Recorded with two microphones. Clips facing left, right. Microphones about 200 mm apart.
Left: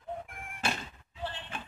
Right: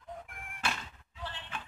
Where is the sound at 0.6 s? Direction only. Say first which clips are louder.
Left 3 dB; 30° left (ahead or behind).